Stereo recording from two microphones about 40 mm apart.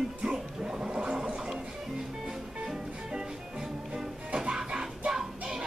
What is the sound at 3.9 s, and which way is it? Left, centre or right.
Music, centre.